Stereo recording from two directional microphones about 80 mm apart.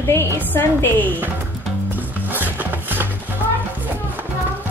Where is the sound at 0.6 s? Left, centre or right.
Left.